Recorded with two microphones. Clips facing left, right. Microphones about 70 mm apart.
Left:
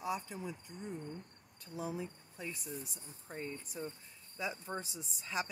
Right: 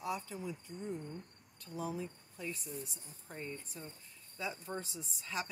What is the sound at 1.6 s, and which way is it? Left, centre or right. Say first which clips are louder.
Speech: even; centre.